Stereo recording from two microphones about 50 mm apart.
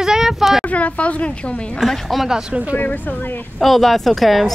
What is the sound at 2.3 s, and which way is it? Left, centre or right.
Speech, centre.